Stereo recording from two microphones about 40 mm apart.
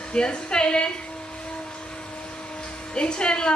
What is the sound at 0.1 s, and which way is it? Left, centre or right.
Speech, left.